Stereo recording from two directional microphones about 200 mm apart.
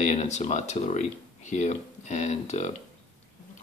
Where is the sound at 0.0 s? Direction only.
35° left (ahead or behind).